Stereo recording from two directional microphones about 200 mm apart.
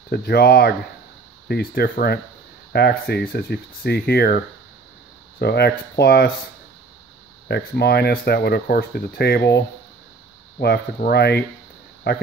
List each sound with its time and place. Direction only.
0.1 s speech: 55° left (ahead or behind)
5.4 s speech: 55° left (ahead or behind)
7.4 s speech: 55° left (ahead or behind)
10.6 s speech: 55° left (ahead or behind)